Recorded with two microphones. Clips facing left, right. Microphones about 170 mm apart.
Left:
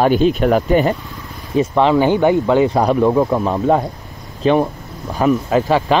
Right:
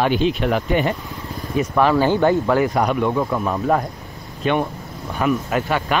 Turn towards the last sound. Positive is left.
turn(degrees=30)  # may be behind; listen again after turning